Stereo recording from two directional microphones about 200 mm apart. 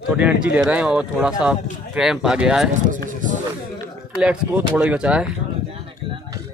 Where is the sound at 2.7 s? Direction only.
40° right (ahead or behind).